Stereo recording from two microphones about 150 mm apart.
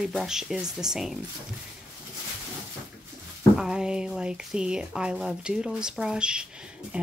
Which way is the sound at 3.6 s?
5° right (ahead or behind).